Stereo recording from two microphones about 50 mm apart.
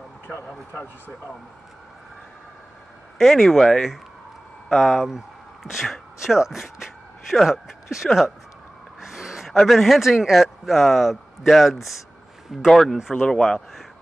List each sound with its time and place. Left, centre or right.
3.3 s a man's voice: centre